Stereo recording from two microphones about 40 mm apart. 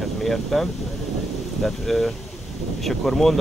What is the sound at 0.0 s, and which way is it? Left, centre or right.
Speech, centre.